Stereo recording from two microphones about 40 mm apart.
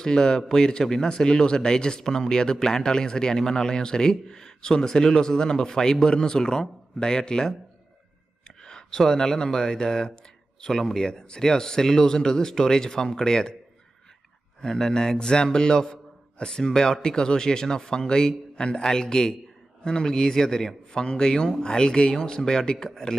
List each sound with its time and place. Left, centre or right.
0.0 s speech: centre
8.6 s speech: centre
14.6 s speech: centre